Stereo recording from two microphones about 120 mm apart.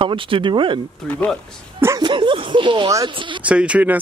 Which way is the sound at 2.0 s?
45° right (ahead or behind).